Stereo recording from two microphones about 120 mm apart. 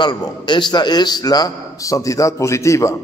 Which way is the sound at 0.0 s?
40° left (ahead or behind).